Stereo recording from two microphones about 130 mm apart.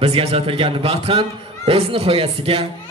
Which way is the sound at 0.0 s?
50° right (ahead or behind).